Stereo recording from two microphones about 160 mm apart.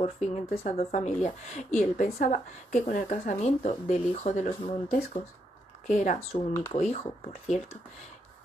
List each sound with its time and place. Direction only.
0.0 s speech: 45° left (ahead or behind)
5.9 s speech: 50° left (ahead or behind)
6.1 s speech: 20° left (ahead or behind)
6.7 s speech: 40° left (ahead or behind)